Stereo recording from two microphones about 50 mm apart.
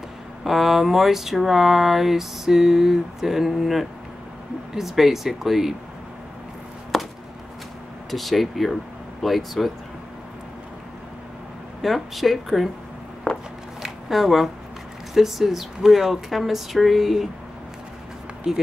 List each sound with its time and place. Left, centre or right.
0.4 s speech: centre
6.9 s chop: centre
8.1 s speech: centre
11.8 s speech: centre
13.3 s a sound: left
13.8 s a sound: centre
15.1 s speech: centre
18.4 s speech: centre